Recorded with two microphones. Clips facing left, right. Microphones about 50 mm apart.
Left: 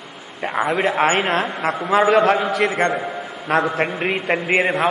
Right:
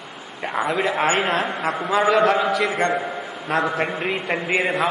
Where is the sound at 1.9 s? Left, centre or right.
Left.